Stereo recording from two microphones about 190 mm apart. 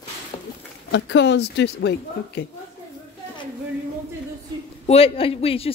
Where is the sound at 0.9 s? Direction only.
70° left (ahead or behind).